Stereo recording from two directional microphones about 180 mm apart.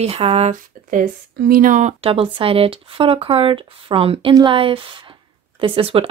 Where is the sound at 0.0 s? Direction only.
35° right (ahead or behind).